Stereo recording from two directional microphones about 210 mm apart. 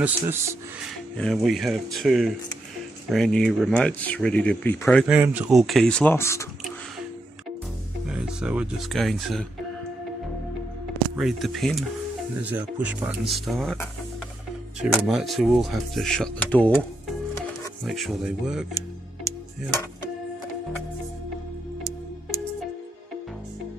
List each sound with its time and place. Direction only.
0.0 s speech: 10° right (ahead or behind)
1.1 s speech: centre (ahead or behind)
5.0 s speech: 5° right (ahead or behind); by 6.4 s 10° left (ahead or behind)
8.1 s speech: 5° right (ahead or behind)
11.1 s speech: centre (ahead or behind)
14.8 s speech: centre (ahead or behind)
17.8 s speech: centre (ahead or behind)